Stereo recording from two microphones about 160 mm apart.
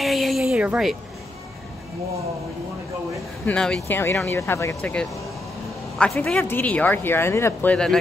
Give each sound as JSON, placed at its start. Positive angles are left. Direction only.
{"t": 0.0, "sound": "a sound", "side_deg": 0}
{"t": 3.4, "sound": "speech", "side_deg": 5}
{"t": 3.8, "sound": "speech", "side_deg": 15}
{"t": 5.9, "sound": "speech", "side_deg": 5}